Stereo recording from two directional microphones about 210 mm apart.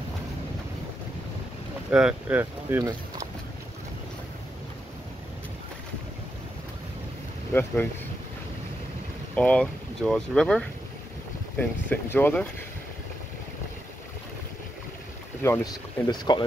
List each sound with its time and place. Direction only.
1.9 s speech: 5° right (ahead or behind)
7.5 s speech: 10° left (ahead or behind)
9.3 s speech: 5° left (ahead or behind)
15.4 s speech: 15° left (ahead or behind)